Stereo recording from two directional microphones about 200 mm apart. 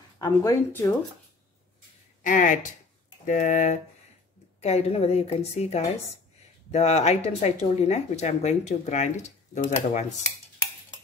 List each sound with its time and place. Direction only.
0.2 s speech: 15° left (ahead or behind)
2.2 s speech: 40° left (ahead or behind)